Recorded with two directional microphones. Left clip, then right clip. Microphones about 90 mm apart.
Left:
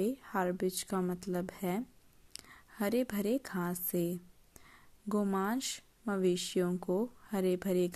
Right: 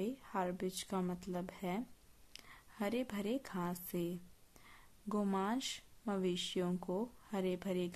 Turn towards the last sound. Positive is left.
turn(degrees=40)  # may be behind; listen again after turning